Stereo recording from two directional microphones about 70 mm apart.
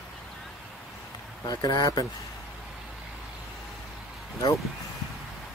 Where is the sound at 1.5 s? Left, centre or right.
Left.